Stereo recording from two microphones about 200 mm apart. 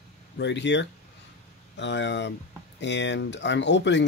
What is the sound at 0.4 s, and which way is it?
Speech, 60° left (ahead or behind).